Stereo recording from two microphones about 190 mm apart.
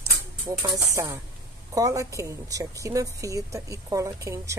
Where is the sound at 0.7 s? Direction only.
15° right (ahead or behind).